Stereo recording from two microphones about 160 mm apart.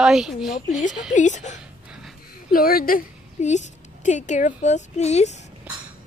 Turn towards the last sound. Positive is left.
turn(degrees=45)  # may be behind; listen again after turning